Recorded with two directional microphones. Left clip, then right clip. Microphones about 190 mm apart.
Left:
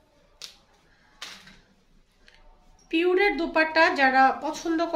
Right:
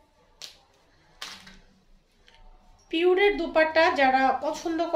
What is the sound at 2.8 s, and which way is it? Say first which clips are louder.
Speech: right 1 dB; 20° left (ahead or behind).